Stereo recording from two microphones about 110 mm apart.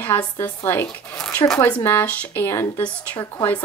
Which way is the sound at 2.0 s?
15° left (ahead or behind).